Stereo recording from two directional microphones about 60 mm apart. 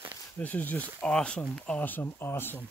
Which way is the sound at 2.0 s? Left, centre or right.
Left.